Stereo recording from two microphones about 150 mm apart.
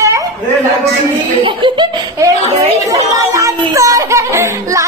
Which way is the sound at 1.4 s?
35° right (ahead or behind).